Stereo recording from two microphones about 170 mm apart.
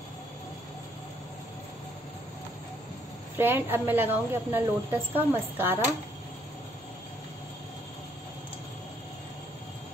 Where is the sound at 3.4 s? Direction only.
10° right (ahead or behind).